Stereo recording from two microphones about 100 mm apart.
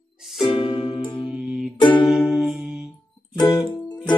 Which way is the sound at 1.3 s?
5° right (ahead or behind).